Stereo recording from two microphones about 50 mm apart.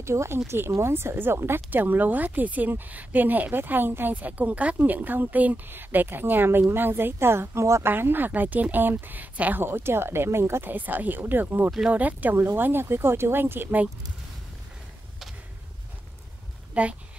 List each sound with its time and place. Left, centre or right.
0.0 s a woman's voice: right
9.7 s speech: right
10.7 s a woman's voice: right
12.5 s speech: right
16.8 s speech: right